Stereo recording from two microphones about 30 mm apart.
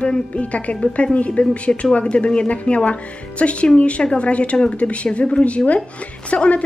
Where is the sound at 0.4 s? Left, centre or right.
Left.